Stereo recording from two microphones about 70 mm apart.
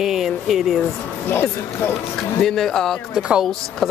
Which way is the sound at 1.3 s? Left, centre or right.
Left.